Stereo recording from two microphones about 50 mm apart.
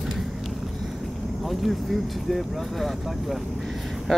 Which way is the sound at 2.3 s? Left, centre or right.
Centre.